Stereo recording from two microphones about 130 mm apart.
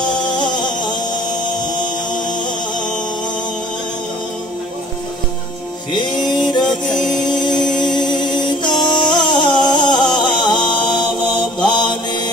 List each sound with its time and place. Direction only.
6.0 s music: 35° left (ahead or behind)
7.5 s music: 5° left (ahead or behind)
7.9 s music: 35° left (ahead or behind)
11.7 s mantra: 35° left (ahead or behind)